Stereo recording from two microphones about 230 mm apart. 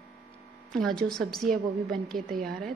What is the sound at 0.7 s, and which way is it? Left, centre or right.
A woman's voice, centre.